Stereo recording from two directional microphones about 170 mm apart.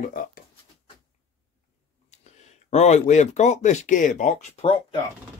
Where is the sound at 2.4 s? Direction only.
40° left (ahead or behind).